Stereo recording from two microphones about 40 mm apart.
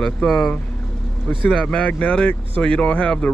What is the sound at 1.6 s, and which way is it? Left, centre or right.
Speech, left.